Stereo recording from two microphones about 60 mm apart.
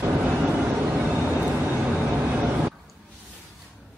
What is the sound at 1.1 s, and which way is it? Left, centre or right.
Vehicle, right.